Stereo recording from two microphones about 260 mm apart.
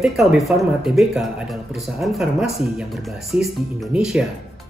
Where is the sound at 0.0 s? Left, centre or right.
Centre.